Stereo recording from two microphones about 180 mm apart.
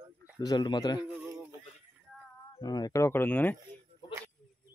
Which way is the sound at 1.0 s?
10° right (ahead or behind).